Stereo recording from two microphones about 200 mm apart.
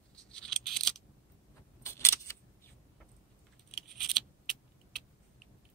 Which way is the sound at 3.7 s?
Centre (ahead or behind).